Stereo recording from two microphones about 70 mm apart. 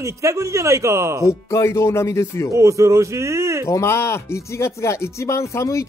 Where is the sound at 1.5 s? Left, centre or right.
Left.